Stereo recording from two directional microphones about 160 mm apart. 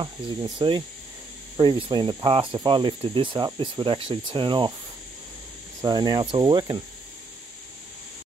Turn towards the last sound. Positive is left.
turn(degrees=-25)  # may be behind; listen again after turning